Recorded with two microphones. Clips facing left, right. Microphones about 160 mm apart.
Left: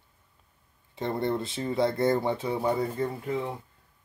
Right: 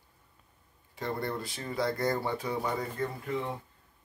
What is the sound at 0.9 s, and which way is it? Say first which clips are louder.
Speech: left 5 dB; 25° left (ahead or behind).